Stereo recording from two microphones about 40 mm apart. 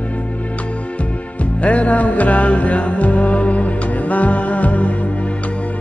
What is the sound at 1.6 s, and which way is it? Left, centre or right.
Music, left.